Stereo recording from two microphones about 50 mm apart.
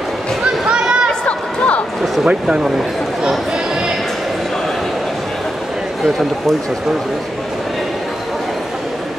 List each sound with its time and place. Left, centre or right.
0.7 s chatter: centre
2.2 s speech: centre